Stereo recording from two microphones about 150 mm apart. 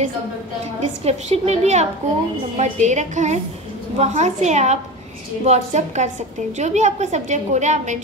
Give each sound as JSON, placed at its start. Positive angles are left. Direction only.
{"t": 0.7, "sound": "a woman's voice", "side_deg": -45}